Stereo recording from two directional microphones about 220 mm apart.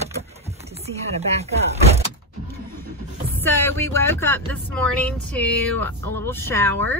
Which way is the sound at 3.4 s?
10° left (ahead or behind).